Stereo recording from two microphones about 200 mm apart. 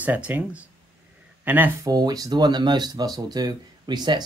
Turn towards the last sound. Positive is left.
turn(degrees=-20)  # may be behind; listen again after turning